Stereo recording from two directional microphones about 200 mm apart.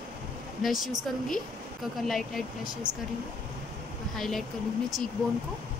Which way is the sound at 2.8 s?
20° right (ahead or behind).